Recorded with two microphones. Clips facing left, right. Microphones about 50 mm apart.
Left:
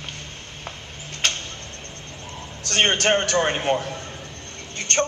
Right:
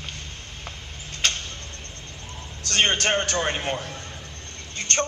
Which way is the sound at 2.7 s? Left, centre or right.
Left.